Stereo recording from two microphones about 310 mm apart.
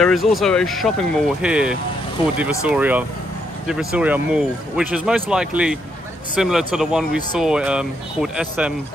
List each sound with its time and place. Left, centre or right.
0.0 s speech: centre
2.2 s speech: centre
2.6 s speech: centre